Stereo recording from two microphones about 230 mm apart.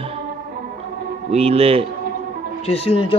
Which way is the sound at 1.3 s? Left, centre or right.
Right.